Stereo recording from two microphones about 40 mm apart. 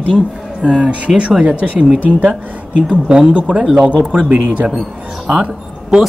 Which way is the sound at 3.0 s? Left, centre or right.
Right.